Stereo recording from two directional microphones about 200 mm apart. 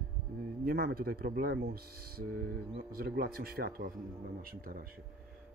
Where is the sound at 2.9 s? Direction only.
50° right (ahead or behind).